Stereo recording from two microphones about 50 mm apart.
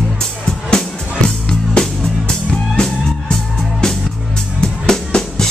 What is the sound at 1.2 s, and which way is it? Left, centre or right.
Music, centre.